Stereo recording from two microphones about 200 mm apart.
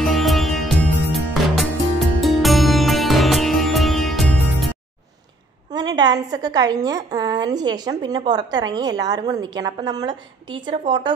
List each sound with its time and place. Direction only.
0.1 s music: centre (ahead or behind)
5.7 s a woman's voice: 20° right (ahead or behind)